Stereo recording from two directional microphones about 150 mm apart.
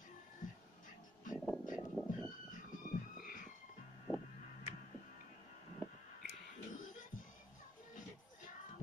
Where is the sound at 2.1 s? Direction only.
60° left (ahead or behind).